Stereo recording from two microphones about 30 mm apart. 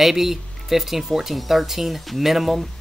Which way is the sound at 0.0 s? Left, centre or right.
Centre.